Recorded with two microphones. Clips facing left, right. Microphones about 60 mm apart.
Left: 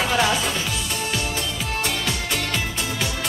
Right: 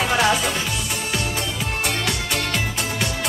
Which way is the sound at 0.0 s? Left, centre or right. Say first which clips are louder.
Right 2 dB; centre.